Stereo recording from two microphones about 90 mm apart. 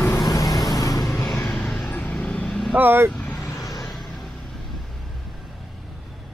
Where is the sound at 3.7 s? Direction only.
Centre (ahead or behind).